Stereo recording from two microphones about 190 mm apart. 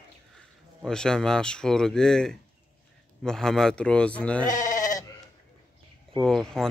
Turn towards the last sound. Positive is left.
turn(degrees=5)  # may be behind; listen again after turning